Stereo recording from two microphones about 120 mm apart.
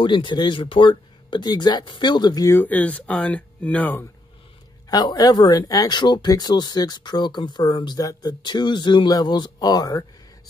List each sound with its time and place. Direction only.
0.0 s speech: 45° left (ahead or behind)
2.5 s speech: 15° left (ahead or behind)
4.8 s speech: 35° left (ahead or behind)